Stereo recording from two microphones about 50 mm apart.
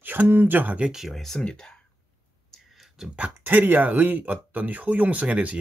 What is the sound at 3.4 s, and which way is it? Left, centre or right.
Speech, right.